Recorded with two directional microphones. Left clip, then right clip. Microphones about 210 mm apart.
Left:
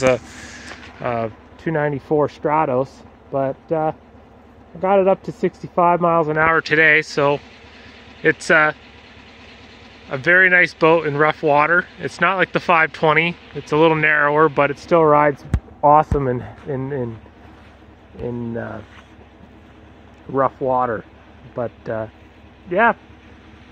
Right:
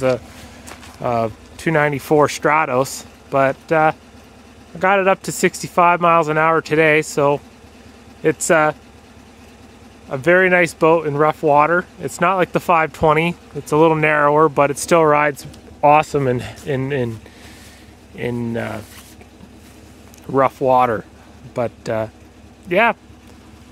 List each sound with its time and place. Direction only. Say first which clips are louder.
1.0 s speech: right 3 dB; 15° right (ahead or behind)
10.0 s speech: even; 5° right (ahead or behind); by 17.1 s 25° right (ahead or behind)
18.3 s speech: right 3 dB; 25° right (ahead or behind)
20.3 s speech: right 3 dB; 25° right (ahead or behind)
20.7 s speech: right 5 dB; 35° right (ahead or behind)